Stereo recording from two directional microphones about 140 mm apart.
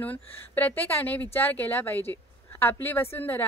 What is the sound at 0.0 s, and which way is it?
Speech, 15° left (ahead or behind).